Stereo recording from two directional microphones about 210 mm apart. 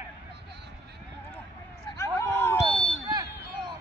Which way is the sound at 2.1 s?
10° left (ahead or behind).